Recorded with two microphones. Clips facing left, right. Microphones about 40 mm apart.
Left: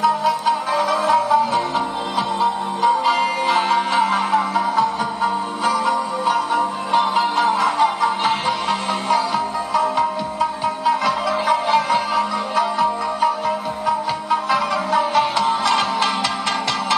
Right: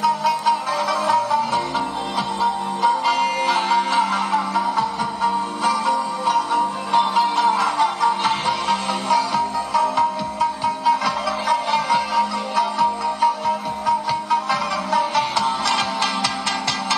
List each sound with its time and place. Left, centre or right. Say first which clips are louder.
0.0 s music: left 1 dB; centre